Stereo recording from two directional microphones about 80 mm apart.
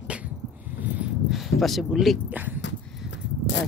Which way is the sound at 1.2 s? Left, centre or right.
Centre.